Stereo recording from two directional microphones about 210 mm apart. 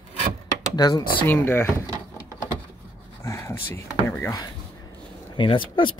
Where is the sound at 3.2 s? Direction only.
15° left (ahead or behind).